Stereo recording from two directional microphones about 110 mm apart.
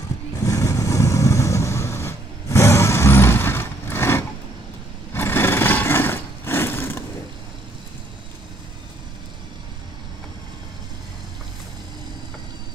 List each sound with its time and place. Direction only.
0.4 s vehicle: 30° left (ahead or behind)
5.1 s sewing machine: 20° left (ahead or behind)